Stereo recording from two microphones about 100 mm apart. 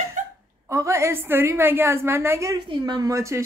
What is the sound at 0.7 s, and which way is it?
Speech, 30° right (ahead or behind).